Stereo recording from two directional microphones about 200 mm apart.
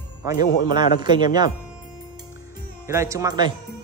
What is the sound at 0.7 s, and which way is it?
Speech, 20° right (ahead or behind).